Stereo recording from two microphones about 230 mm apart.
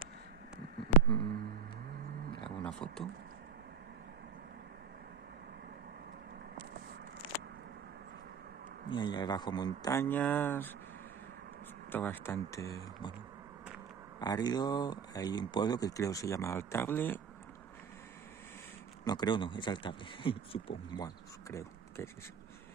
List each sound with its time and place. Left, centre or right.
1.0 s a sound: left
2.6 s speech: centre
8.9 s speech: centre
11.9 s speech: centre
14.2 s speech: centre
19.0 s a man's voice: centre